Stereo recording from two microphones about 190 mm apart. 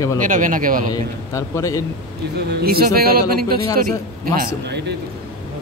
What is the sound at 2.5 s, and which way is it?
Speech, 55° right (ahead or behind).